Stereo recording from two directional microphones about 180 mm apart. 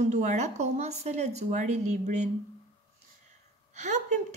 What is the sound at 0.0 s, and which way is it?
Speech, 40° right (ahead or behind).